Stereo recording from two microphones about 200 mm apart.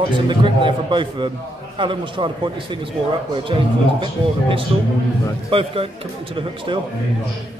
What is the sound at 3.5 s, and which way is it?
Speech, 25° right (ahead or behind).